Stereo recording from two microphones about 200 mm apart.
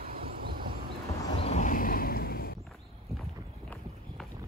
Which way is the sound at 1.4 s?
35° left (ahead or behind).